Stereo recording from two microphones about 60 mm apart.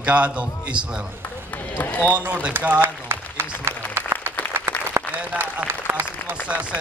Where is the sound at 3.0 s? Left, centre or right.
Right.